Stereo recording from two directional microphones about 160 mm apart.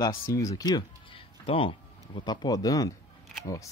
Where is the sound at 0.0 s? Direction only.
20° left (ahead or behind).